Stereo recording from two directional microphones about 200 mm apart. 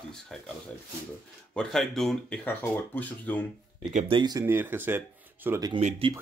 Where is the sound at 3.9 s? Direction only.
35° right (ahead or behind).